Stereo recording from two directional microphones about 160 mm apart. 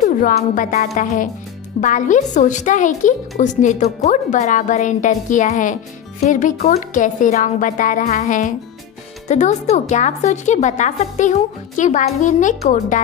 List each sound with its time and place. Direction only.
0.4 s a woman's voice: 50° left (ahead or behind)